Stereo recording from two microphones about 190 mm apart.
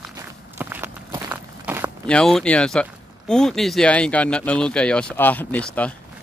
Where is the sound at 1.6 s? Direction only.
10° right (ahead or behind).